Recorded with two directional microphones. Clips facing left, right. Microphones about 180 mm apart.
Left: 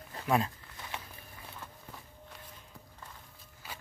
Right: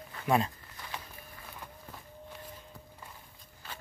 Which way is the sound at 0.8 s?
25° left (ahead or behind).